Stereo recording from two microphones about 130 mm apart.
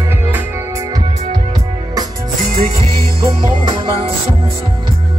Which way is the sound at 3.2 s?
40° right (ahead or behind).